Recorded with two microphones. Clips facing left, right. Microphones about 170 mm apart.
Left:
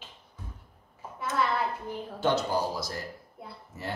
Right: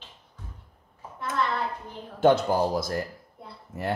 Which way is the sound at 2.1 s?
55° right (ahead or behind).